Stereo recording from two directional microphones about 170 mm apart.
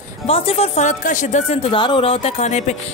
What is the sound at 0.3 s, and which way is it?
Speech, 35° left (ahead or behind).